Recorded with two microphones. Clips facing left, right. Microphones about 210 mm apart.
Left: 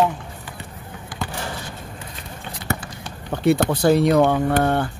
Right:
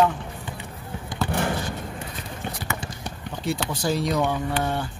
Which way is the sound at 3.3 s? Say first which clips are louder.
Left 10 dB; 60° left (ahead or behind).